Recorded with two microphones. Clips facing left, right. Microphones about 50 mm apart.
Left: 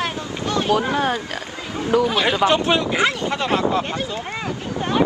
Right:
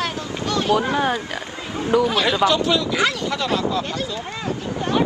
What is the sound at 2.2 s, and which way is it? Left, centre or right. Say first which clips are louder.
Speech: left 1 dB; left.